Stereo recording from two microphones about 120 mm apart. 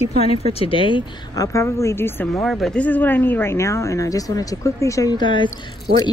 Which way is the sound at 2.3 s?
Centre (ahead or behind).